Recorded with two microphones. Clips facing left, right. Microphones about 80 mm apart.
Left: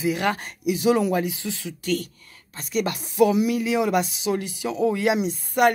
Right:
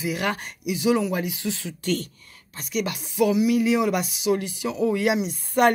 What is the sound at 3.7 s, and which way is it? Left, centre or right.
Speech, left.